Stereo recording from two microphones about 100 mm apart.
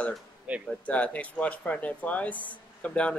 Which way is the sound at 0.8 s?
15° left (ahead or behind).